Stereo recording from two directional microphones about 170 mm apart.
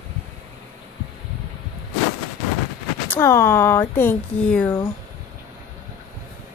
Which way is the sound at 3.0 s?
15° left (ahead or behind).